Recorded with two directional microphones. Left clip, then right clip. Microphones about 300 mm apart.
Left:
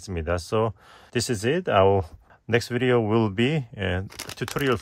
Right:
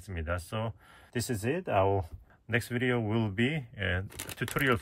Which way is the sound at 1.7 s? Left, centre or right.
Left.